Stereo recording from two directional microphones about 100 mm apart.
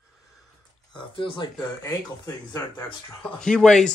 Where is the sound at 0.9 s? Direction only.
55° left (ahead or behind).